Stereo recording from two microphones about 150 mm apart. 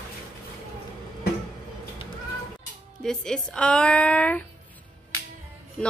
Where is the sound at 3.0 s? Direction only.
Centre (ahead or behind).